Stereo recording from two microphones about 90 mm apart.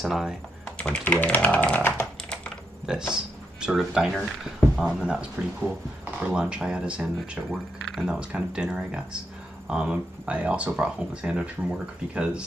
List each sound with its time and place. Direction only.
0.0 s speech: 5° right (ahead or behind)
0.7 s speech: 10° left (ahead or behind)
2.2 s typing: 10° left (ahead or behind)
2.9 s speech: 10° right (ahead or behind)
6.3 s speech: 10° right (ahead or behind)